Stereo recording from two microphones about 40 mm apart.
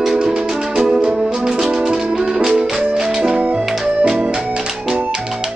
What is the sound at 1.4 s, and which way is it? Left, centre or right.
Music, centre.